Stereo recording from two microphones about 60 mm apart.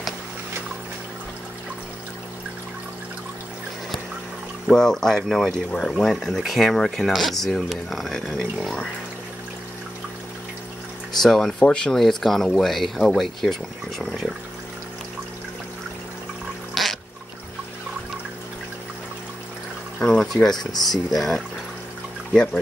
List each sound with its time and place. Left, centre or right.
4.6 s speech: centre
11.1 s speech: centre
16.8 s a sound: centre
20.0 s speech: centre